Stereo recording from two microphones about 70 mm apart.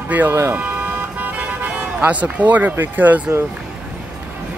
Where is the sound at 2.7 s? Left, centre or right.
Right.